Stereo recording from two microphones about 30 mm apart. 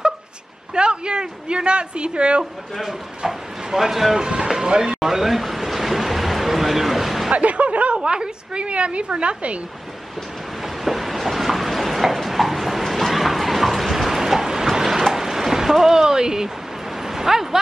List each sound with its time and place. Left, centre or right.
0.7 s a woman's voice: right
3.3 s speech: centre
4.1 s speech: right
5.0 s a sound: centre
7.3 s speech: right
8.0 s a woman's voice: right
10.6 s train: centre
15.1 s a sound: centre
17.0 s vehicle: centre